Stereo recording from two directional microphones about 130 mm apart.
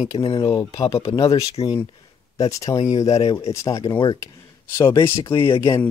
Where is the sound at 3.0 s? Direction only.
55° left (ahead or behind).